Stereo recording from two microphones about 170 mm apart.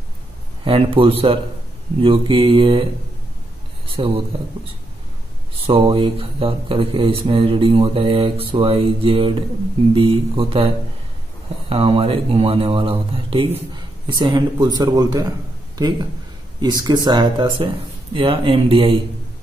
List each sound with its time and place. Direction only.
0.7 s speech: 30° right (ahead or behind)
5.7 s speech: 30° right (ahead or behind)
11.7 s speech: 35° right (ahead or behind)
16.6 s speech: 25° right (ahead or behind)